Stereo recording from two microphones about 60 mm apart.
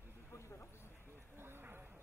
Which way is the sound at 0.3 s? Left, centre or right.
Left.